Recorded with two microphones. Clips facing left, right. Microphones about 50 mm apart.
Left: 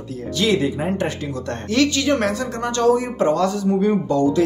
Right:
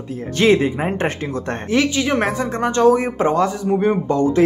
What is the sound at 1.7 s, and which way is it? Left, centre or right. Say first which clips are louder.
Speech: even; centre.